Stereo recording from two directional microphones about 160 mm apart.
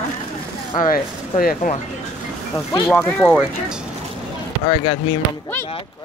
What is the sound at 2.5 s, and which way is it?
Speech, 15° left (ahead or behind).